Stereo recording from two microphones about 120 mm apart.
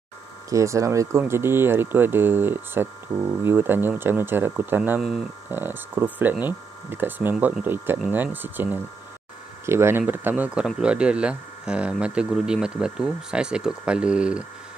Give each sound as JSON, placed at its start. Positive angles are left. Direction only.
{"t": 0.5, "sound": "speech", "side_deg": -25}